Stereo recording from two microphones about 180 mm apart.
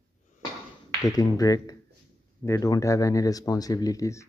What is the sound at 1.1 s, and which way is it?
Speech, 20° left (ahead or behind).